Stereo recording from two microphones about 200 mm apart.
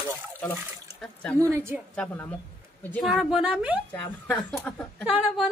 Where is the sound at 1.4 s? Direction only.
15° right (ahead or behind).